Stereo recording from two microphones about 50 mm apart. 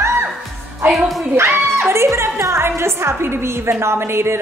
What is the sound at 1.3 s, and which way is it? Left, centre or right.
A woman's voice, right.